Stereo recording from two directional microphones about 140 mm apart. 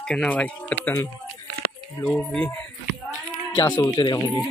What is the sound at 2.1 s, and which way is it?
Speech, 10° left (ahead or behind).